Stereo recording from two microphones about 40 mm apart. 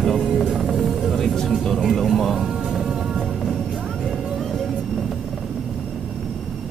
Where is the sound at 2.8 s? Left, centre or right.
Centre.